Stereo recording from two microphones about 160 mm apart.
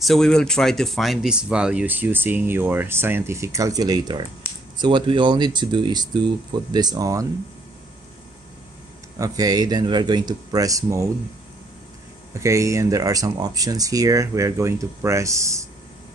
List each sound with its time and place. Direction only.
0.0 s speech: centre (ahead or behind); by 7.2 s 20° right (ahead or behind)
9.2 s speech: 25° right (ahead or behind)
12.4 s speech: 20° right (ahead or behind)